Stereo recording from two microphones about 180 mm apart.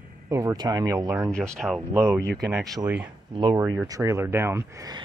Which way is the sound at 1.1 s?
Centre (ahead or behind).